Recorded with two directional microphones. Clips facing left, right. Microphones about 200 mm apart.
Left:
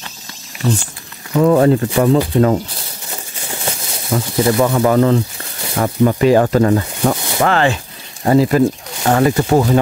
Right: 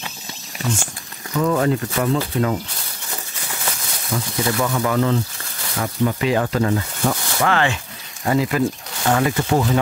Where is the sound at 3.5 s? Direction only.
25° left (ahead or behind).